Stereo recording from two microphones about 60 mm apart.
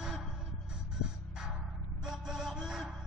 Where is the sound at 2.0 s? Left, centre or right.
Centre.